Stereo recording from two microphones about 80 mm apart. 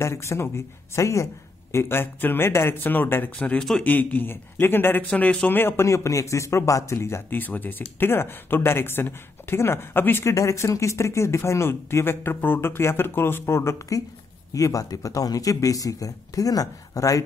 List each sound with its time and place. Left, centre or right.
0.0 s speech: left
5.1 s speech: centre
5.6 s speech: left
10.3 s speech: left
14.5 s speech: left